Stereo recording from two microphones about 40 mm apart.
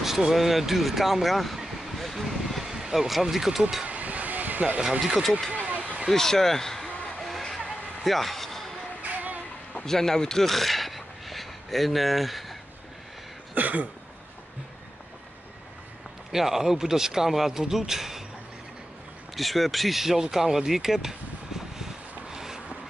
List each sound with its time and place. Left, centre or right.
0.0 s speech: centre
3.8 s vehicle: right
5.0 s speech: centre
5.7 s a sound: right
6.1 s speech: centre
7.2 s music: centre
8.0 s a sound: centre
9.0 s music: right
9.8 s speech: centre
13.6 s a sound: right
16.3 s speech: centre
19.3 s speech: centre
21.5 s a sound: centre